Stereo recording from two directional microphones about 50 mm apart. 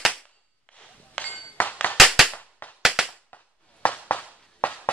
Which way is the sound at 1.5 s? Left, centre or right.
Left.